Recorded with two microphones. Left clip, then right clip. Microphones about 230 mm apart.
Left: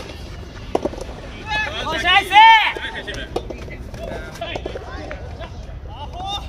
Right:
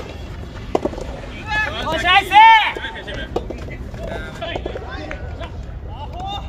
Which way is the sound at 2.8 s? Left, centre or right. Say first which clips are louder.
Left 1 dB; centre.